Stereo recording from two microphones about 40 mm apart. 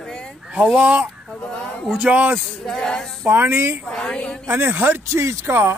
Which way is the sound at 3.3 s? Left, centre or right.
Right.